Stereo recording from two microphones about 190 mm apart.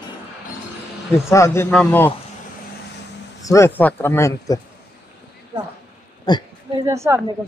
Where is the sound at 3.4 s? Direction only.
15° left (ahead or behind).